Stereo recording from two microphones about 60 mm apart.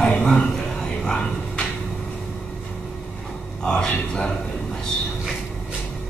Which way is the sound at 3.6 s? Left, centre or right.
Centre.